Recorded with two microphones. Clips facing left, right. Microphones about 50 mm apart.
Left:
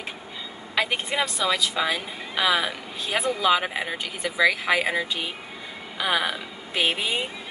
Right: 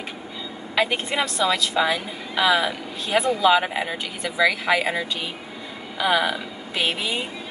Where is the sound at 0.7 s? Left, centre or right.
Centre.